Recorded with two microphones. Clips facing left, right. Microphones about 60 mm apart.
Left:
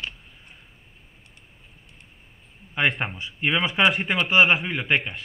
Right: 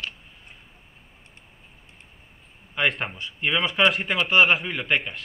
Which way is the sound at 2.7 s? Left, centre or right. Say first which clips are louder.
Left 1 dB; centre.